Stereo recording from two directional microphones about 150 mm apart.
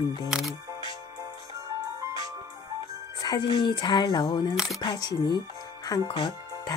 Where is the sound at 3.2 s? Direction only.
30° left (ahead or behind).